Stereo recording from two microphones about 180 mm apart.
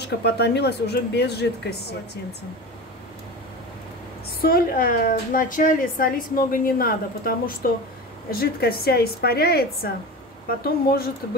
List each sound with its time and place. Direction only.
0.2 s speech: 70° left (ahead or behind)
4.4 s a woman's voice: 55° left (ahead or behind)